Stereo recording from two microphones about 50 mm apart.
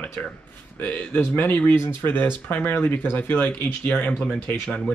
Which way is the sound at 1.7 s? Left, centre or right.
Left.